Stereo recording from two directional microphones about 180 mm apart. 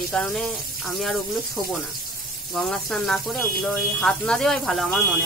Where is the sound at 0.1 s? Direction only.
5° left (ahead or behind).